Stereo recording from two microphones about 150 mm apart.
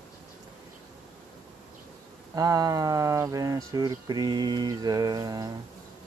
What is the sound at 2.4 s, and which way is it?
Speech, 25° right (ahead or behind).